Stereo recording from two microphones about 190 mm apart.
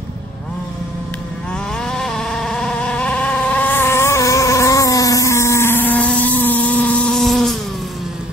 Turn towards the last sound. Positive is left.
turn(degrees=0)  # may be behind; listen again after turning